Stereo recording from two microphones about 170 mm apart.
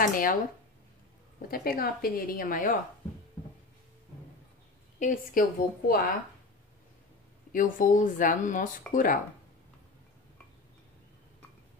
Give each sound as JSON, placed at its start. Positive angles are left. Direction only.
{"t": 0.0, "sound": "a woman's voice", "side_deg": 55}
{"t": 1.5, "sound": "a woman's voice", "side_deg": 60}
{"t": 4.9, "sound": "a woman's voice", "side_deg": 50}
{"t": 7.5, "sound": "speech", "side_deg": 50}